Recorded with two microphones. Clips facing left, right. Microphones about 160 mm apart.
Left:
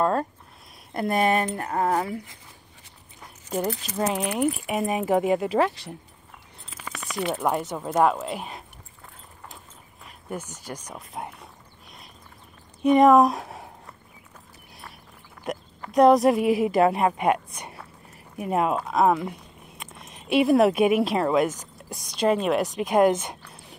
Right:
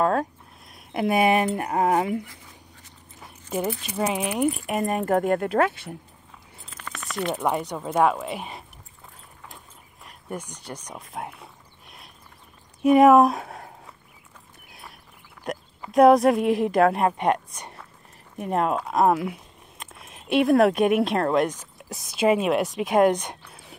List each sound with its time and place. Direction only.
0.0 s speech: centre (ahead or behind)
3.2 s a woman's voice: 5° right (ahead or behind)
6.6 s keys jangling: 5° left (ahead or behind)
7.9 s a woman's voice: centre (ahead or behind)
10.0 s a sound: 5° left (ahead or behind)
12.8 s speech: 5° right (ahead or behind)
14.7 s clip-clop: centre (ahead or behind)
15.5 s a woman's voice: centre (ahead or behind)